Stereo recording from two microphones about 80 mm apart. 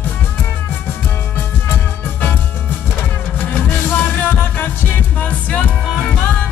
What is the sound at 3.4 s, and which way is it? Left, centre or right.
Music, left.